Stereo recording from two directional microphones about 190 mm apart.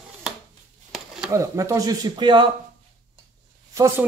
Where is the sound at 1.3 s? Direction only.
15° right (ahead or behind).